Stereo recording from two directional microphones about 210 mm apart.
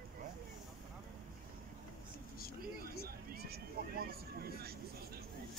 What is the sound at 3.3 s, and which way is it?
Vehicle, 50° right (ahead or behind).